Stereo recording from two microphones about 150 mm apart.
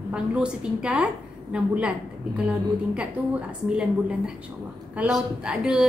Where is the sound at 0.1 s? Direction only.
5° right (ahead or behind).